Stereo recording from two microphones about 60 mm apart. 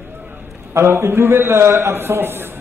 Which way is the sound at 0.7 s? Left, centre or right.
Right.